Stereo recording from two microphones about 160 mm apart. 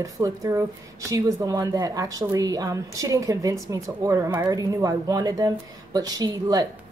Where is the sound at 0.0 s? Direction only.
20° right (ahead or behind).